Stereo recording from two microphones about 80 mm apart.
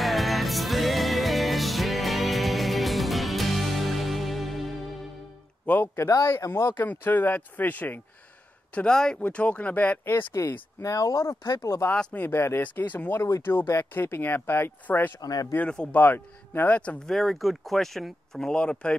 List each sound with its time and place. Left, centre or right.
0.0 s music: centre
5.7 s speech: left
8.7 s speech: centre
10.8 s speech: left
11.6 s speech: left
15.1 s speech: left
15.5 s speech: centre
15.9 s speech: left
17.1 s speech: centre